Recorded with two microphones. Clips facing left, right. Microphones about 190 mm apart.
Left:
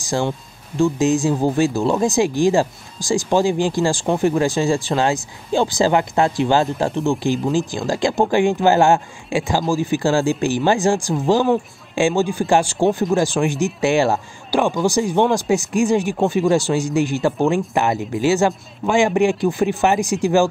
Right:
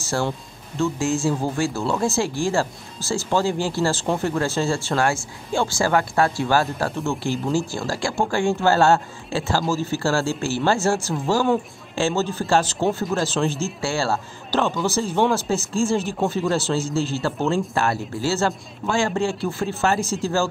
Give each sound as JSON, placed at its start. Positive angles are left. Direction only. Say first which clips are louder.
{"t": 0.7, "sound": "speech", "louder": "left 6 dB", "side_deg": 15}